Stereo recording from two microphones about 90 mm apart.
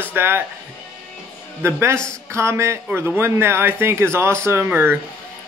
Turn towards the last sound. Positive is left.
turn(degrees=-25)  # may be behind; listen again after turning